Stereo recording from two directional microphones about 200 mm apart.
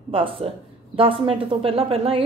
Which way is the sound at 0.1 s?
25° right (ahead or behind).